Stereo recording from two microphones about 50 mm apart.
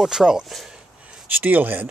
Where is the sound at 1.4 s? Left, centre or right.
Right.